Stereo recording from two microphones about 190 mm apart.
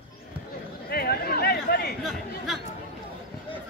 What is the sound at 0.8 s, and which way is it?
Chatter, 55° left (ahead or behind).